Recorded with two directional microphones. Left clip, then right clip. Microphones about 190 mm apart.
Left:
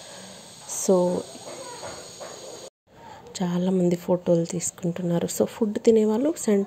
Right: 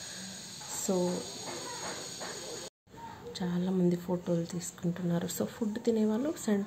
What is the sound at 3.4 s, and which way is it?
Speech, 40° left (ahead or behind).